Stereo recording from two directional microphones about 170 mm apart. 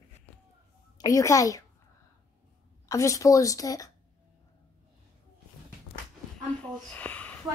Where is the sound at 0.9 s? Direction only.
20° left (ahead or behind).